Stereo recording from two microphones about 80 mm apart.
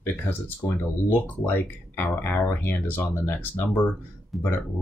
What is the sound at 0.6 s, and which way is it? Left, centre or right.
Speech, left.